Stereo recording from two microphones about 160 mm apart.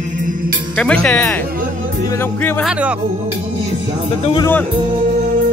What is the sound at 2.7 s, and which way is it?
Speech, 10° right (ahead or behind).